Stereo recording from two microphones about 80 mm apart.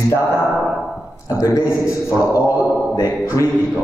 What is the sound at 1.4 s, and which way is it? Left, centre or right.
A man's voice, left.